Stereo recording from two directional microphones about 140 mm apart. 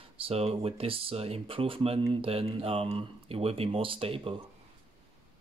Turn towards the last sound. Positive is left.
turn(degrees=-40)  # may be behind; listen again after turning